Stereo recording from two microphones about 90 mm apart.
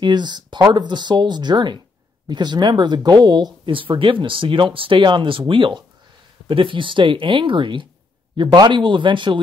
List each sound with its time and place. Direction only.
0.0 s speech: 55° right (ahead or behind)
4.0 s speech: 70° right (ahead or behind)